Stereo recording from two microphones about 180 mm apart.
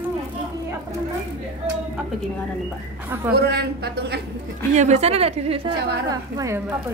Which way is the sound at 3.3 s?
60° right (ahead or behind).